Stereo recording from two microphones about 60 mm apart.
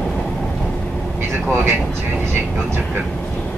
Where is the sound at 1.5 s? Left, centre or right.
Right.